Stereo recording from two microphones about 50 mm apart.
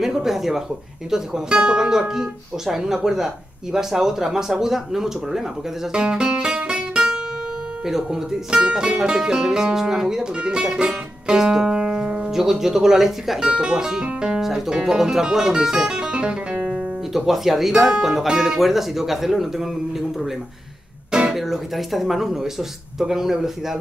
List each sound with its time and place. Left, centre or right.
0.0 s speech: centre
5.9 s music: centre
7.8 s speech: centre
16.7 s speech: centre
21.1 s music: centre
21.4 s speech: centre